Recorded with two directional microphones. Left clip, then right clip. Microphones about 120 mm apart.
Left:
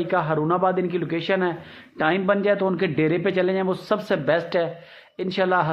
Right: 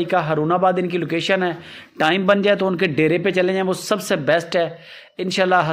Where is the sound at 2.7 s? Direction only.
20° right (ahead or behind).